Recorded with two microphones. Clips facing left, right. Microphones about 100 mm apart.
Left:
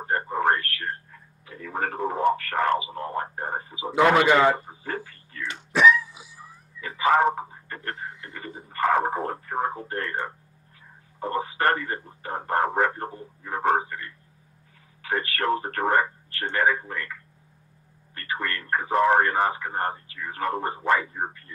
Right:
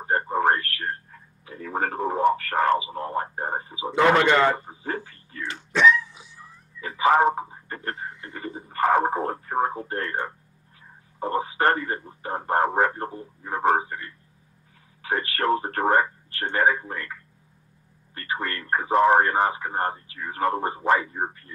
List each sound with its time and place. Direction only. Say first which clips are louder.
0.0 s a sound: right 2 dB; 25° right (ahead or behind)
1.5 s speech: right 2 dB; 30° right (ahead or behind)
3.8 s a man's voice: even; 5° left (ahead or behind)
4.6 s speech: right 2 dB; 25° right (ahead or behind)
5.5 s dog: even; 10° left (ahead or behind)
7.0 s speech: right 1 dB; 15° right (ahead or behind)
7.9 s speech: left 1 dB; centre (ahead or behind)
8.3 s a sound: right 4 dB; 30° right (ahead or behind)
8.7 s speech: right 2 dB; 25° right (ahead or behind)
18.1 s speech: right 1 dB; 25° right (ahead or behind)